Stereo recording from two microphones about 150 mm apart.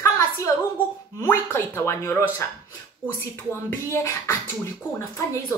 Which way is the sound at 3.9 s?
20° left (ahead or behind).